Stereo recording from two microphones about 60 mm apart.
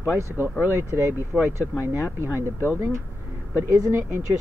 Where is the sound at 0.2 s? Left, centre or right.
Right.